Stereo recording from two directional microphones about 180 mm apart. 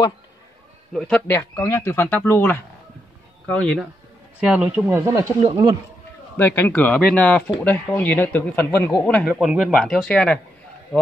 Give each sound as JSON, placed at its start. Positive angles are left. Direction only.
{"t": 0.9, "sound": "speech", "side_deg": 5}
{"t": 4.4, "sound": "speech", "side_deg": -10}
{"t": 6.3, "sound": "speech", "side_deg": 10}